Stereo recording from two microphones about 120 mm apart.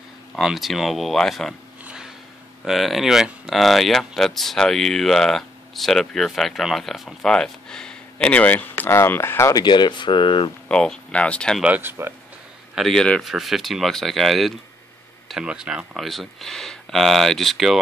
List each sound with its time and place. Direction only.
0.4 s speech: centre (ahead or behind)
2.6 s speech: centre (ahead or behind); by 9.6 s 20° left (ahead or behind)
9.6 s speech: 40° left (ahead or behind)
10.7 s speech: 5° left (ahead or behind)
11.6 s speech: 15° right (ahead or behind)
12.7 s speech: 5° left (ahead or behind)